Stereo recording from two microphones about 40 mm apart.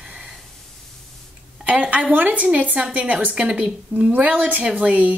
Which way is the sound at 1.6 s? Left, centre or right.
Right.